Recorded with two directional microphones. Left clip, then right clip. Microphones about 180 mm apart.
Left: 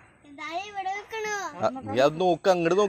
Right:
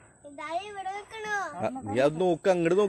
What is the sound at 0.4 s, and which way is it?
Speech, 20° right (ahead or behind).